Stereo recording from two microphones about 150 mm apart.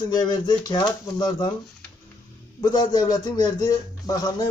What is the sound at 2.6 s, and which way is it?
Speech, 25° left (ahead or behind).